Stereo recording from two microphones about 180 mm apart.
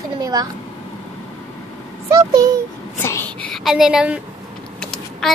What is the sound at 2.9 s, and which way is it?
A woman's voice, 10° left (ahead or behind).